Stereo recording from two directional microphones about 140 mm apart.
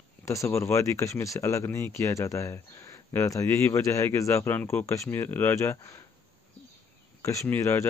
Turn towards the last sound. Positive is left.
turn(degrees=20)  # may be behind; listen again after turning